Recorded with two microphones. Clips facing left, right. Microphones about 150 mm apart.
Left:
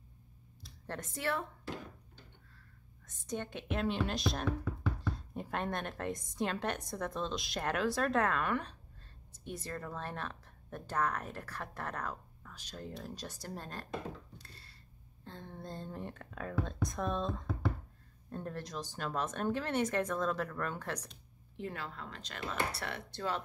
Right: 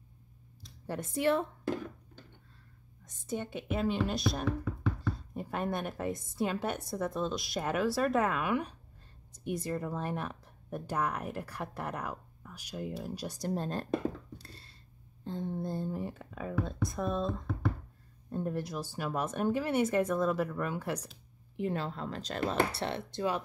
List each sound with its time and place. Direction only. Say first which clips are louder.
0.8 s speech: right 8 dB; 10° right (ahead or behind)
3.1 s speech: right 3 dB; 5° right (ahead or behind)
13.5 s speech: right 12 dB; 25° right (ahead or behind)
14.4 s a sound: right 5 dB; 30° right (ahead or behind)
15.2 s a sound: right 10 dB; 15° right (ahead or behind)
16.9 s speech: right 3 dB; 5° right (ahead or behind)
18.3 s speech: right 6 dB; 10° right (ahead or behind)
21.7 s speech: right 8 dB; 30° right (ahead or behind)